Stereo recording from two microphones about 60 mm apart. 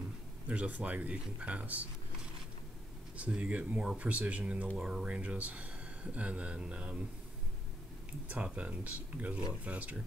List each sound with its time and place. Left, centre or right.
0.5 s speech: right
3.2 s speech: right
4.7 s speech: centre
5.0 s speech: right
8.1 s speech: centre